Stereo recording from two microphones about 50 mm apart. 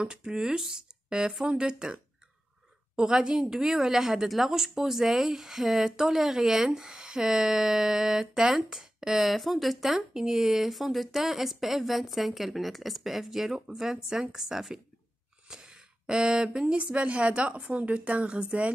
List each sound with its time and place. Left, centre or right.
0.0 s a woman's voice: centre
3.0 s a woman's voice: centre